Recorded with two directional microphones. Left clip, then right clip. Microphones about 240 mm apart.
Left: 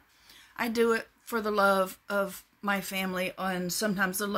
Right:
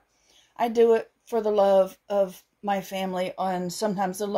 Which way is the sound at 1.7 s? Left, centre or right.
Left.